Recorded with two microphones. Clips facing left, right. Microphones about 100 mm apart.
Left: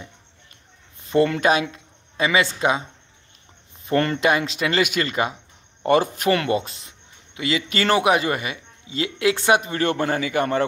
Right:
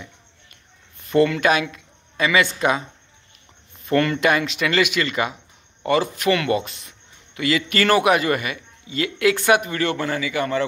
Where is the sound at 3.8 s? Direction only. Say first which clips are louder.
Right 1 dB; 30° left (ahead or behind).